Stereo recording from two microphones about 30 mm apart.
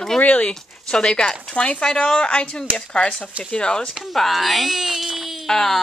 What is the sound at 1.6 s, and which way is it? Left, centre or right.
Speech, left.